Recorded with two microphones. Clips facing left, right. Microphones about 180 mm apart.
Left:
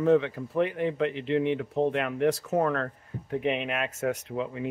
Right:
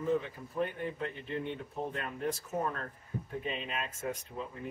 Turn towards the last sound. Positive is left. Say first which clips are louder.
# left 9 dB
turn(degrees=90)